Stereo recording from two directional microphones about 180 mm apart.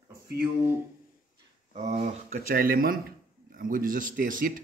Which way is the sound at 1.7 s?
40° right (ahead or behind).